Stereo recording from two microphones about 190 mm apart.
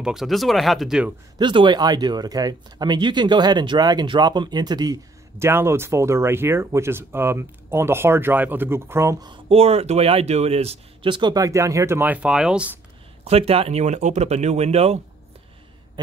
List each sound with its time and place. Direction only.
0.0 s speech: centre (ahead or behind)
1.4 s speech: 25° right (ahead or behind); by 12.7 s 5° right (ahead or behind)
13.2 s speech: 30° right (ahead or behind)